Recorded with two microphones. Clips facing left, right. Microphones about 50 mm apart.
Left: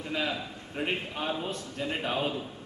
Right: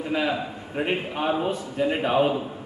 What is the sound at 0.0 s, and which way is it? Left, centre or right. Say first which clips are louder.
A man's voice: right 7 dB; centre.